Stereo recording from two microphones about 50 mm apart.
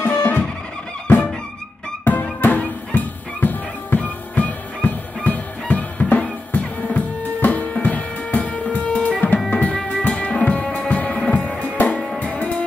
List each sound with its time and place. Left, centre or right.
0.0 s music: left
2.1 s music: left